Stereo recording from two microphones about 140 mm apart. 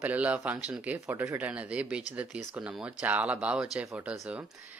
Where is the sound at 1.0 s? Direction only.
20° right (ahead or behind).